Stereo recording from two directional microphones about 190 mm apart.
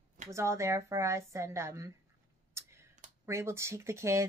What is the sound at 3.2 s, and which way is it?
Speech, 15° right (ahead or behind).